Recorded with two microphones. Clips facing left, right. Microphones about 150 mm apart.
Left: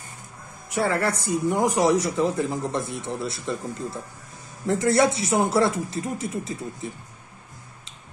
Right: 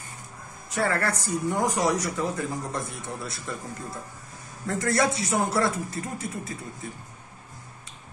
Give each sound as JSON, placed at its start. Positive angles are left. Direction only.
{"t": 0.7, "sound": "speech", "side_deg": 20}
{"t": 4.6, "sound": "speech", "side_deg": 20}